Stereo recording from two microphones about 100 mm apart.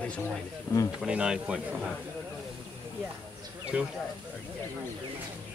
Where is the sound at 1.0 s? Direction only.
10° right (ahead or behind).